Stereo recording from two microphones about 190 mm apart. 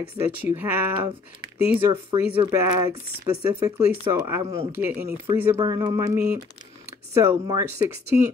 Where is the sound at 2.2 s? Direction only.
10° right (ahead or behind).